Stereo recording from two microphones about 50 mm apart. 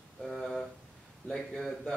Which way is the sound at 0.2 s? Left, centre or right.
Centre.